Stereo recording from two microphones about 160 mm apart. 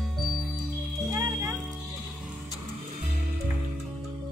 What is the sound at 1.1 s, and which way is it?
Music, 20° right (ahead or behind).